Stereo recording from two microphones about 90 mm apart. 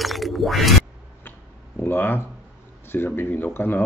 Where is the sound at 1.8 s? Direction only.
25° left (ahead or behind).